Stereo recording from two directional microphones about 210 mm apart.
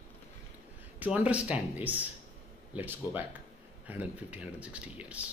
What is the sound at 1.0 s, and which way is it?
Speech, 5° right (ahead or behind).